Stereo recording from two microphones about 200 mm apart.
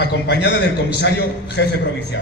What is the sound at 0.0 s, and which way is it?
A man's voice, 55° left (ahead or behind).